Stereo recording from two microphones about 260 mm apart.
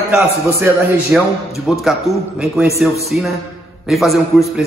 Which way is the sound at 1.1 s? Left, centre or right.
Centre.